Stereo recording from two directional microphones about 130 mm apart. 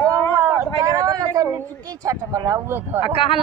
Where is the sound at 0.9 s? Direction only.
30° right (ahead or behind).